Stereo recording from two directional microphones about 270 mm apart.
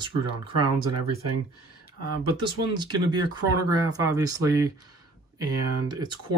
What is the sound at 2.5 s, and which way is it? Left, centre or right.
Speech, centre.